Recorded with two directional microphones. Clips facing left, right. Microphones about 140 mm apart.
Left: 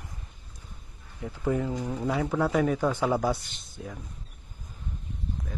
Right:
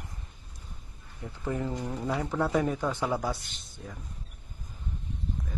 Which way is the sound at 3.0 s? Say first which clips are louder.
Left 4 dB; 20° left (ahead or behind).